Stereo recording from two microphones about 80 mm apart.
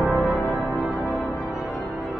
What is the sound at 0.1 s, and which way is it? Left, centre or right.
Music, centre.